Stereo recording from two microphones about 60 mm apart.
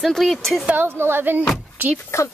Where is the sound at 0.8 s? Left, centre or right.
Right.